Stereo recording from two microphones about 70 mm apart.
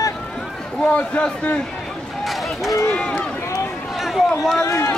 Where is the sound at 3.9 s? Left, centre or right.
Centre.